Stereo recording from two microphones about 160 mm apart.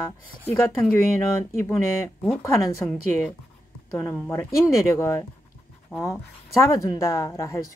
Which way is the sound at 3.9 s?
15° left (ahead or behind).